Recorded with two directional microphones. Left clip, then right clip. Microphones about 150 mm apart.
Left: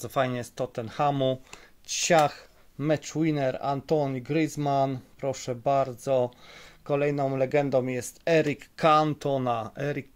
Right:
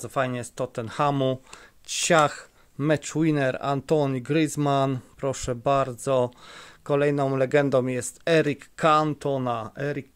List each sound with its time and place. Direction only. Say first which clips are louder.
0.0 s speech: right 1 dB; 10° right (ahead or behind)